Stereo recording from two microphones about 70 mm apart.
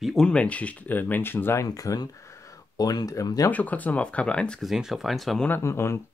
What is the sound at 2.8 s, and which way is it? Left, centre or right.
Speech, left.